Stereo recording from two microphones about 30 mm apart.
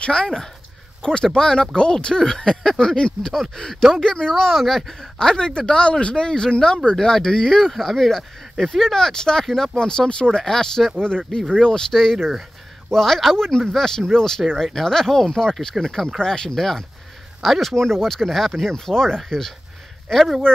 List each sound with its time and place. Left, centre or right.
0.0 s speech: left
3.9 s speech: centre
5.2 s speech: left
6.2 s speech: left
7.7 s speech: centre
10.0 s speech: left
10.4 s speech: centre
11.9 s speech: centre
16.4 s speech: centre
17.7 s speech: centre
18.3 s speech: centre
20.5 s speech: left